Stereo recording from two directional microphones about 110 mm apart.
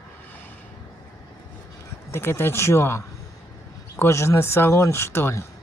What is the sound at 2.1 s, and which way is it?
Speech, 20° left (ahead or behind).